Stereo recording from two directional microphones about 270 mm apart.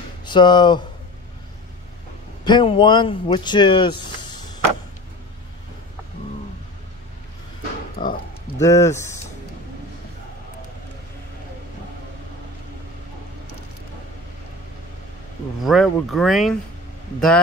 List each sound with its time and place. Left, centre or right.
0.2 s speech: centre
2.4 s speech: centre
8.0 s a sound: centre
8.5 s speech: centre
15.6 s speech: centre